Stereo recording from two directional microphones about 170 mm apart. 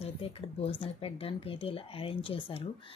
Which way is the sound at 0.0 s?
35° left (ahead or behind).